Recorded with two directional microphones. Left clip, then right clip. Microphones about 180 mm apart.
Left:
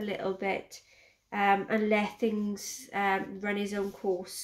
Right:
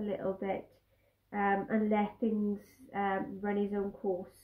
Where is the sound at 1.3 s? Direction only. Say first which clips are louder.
Left 5 dB; 25° left (ahead or behind).